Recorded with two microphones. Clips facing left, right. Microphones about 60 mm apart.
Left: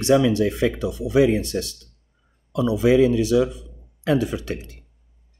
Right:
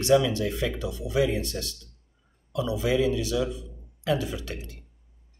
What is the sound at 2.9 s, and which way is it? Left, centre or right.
Speech, left.